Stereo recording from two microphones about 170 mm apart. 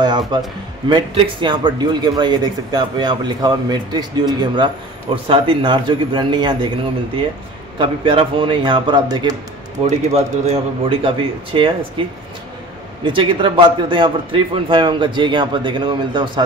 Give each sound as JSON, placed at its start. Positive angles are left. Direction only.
{"t": 0.3, "sound": "speech", "side_deg": -25}
{"t": 7.8, "sound": "speech", "side_deg": -30}
{"t": 9.8, "sound": "speech", "side_deg": -40}